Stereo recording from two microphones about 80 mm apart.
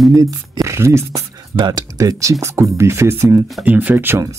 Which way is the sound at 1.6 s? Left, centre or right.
Right.